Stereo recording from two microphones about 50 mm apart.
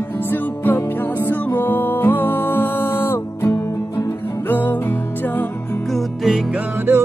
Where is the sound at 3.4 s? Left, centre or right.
Left.